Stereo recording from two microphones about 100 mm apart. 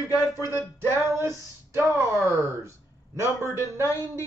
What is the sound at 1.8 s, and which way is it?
Speech, 25° right (ahead or behind).